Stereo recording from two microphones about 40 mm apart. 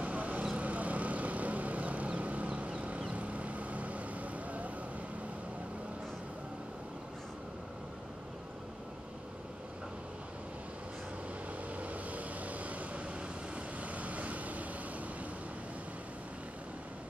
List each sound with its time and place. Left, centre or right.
0.0 s vehicle: right
11.8 s vehicle: right